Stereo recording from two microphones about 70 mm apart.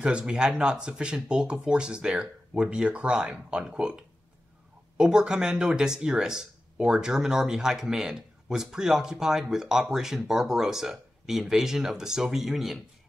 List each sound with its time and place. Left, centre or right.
0.0 s speech: centre